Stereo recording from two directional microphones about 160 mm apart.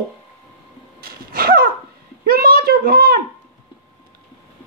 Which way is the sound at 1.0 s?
70° right (ahead or behind).